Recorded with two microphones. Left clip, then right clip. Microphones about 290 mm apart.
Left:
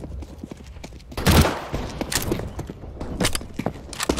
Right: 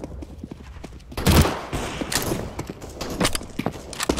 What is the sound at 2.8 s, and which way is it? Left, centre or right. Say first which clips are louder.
Clip-clop: right 4 dB; right.